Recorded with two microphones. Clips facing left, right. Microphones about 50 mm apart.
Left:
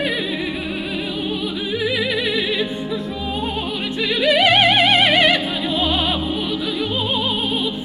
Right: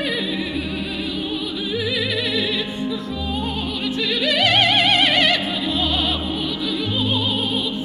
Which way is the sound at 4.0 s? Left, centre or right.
Centre.